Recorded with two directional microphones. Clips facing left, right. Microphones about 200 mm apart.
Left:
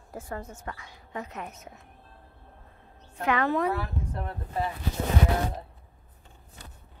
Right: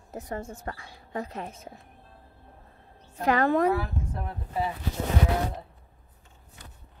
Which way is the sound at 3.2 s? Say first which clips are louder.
Right 3 dB; 40° right (ahead or behind).